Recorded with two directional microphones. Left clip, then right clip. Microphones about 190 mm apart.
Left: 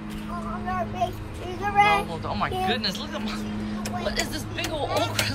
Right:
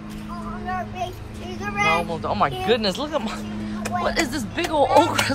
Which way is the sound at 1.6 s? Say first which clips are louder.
Left 1 dB; 55° left (ahead or behind).